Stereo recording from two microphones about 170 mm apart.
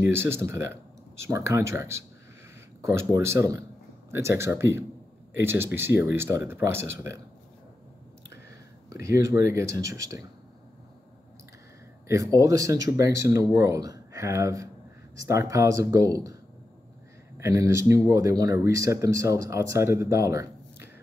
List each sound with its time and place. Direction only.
0.0 s speech: 15° right (ahead or behind)
8.9 s speech: 15° right (ahead or behind)
12.1 s speech: 20° right (ahead or behind)
17.4 s speech: 20° right (ahead or behind)